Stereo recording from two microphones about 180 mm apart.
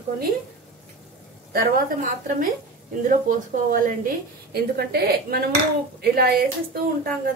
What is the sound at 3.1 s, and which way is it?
Speech, 50° right (ahead or behind).